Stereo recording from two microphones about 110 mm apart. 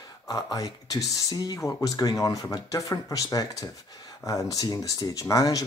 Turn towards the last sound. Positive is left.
turn(degrees=30)  # may be behind; listen again after turning